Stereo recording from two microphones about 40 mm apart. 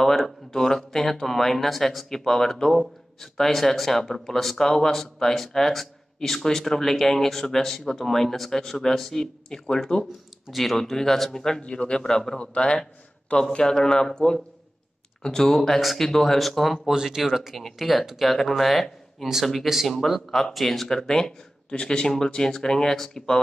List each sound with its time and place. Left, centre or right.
0.5 s speech: centre
10.5 s speech: centre
11.6 s speech: left
12.0 s speech: centre
12.4 s speech: left; by 16.9 s centre
16.9 s speech: centre